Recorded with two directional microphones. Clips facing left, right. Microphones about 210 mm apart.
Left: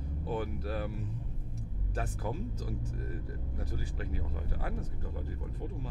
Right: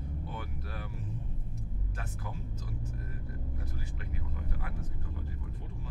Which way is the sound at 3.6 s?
35° left (ahead or behind).